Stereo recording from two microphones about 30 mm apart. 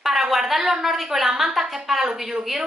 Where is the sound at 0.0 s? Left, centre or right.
Centre.